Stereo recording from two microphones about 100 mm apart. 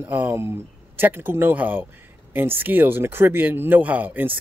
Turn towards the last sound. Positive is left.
turn(degrees=-20)  # may be behind; listen again after turning